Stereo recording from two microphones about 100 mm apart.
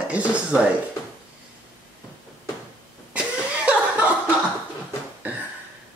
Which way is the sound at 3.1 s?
10° right (ahead or behind).